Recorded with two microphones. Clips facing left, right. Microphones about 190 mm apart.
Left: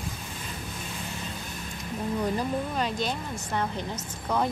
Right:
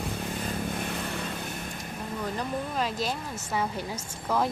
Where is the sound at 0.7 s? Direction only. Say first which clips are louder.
Right 5 dB; 60° right (ahead or behind).